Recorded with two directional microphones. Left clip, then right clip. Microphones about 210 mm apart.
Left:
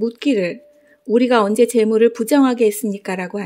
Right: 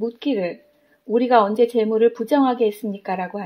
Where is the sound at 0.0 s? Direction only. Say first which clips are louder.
Left 4 dB; 55° left (ahead or behind).